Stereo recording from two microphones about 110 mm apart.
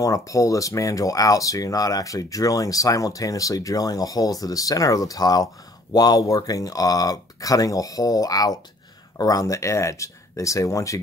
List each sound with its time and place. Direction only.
0.0 s speech: 30° left (ahead or behind)